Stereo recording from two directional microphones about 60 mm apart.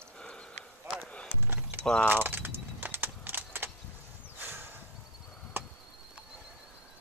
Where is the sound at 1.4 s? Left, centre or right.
Right.